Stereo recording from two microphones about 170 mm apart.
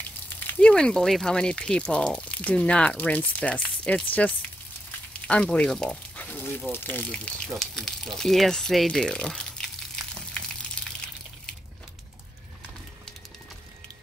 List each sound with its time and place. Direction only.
0.6 s speech: 5° left (ahead or behind)